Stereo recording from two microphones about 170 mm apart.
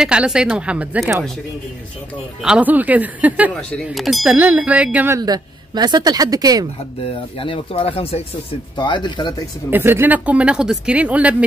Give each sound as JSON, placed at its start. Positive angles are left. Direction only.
{"t": 0.0, "sound": "speech", "side_deg": -5}
{"t": 2.4, "sound": "speech", "side_deg": -10}
{"t": 5.2, "sound": "a woman's voice", "side_deg": -25}
{"t": 7.3, "sound": "speech", "side_deg": 30}
{"t": 9.7, "sound": "speech", "side_deg": -10}